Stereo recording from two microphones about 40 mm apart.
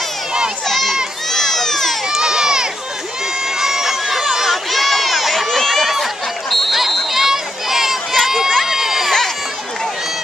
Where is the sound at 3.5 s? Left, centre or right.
Centre.